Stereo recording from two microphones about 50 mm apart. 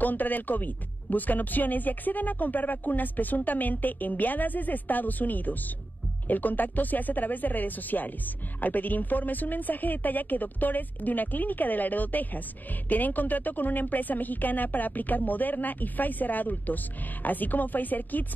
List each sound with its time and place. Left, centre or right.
0.0 s a woman's voice: left